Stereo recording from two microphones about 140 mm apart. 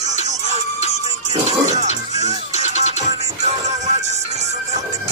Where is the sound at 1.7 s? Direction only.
55° right (ahead or behind).